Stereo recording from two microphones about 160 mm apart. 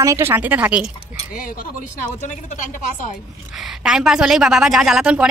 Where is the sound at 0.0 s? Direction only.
15° right (ahead or behind).